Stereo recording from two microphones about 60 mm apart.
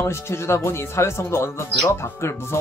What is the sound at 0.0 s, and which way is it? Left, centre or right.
Speech, left.